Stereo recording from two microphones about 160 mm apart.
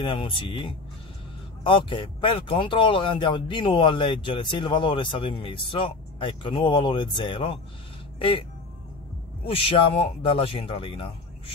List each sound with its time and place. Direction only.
0.0 s speech: 30° left (ahead or behind)
9.5 s speech: 35° left (ahead or behind)